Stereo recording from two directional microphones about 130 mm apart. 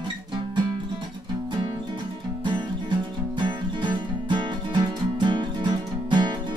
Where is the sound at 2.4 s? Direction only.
35° right (ahead or behind).